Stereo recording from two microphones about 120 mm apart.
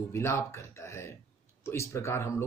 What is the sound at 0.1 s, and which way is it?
Speech, 25° left (ahead or behind).